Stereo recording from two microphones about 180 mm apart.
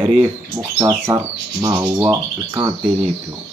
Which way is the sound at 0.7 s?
20° right (ahead or behind).